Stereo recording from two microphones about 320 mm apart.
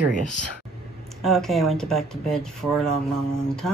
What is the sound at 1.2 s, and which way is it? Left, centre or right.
Speech, centre.